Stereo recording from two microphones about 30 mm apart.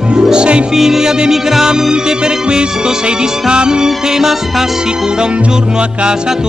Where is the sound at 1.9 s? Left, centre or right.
Right.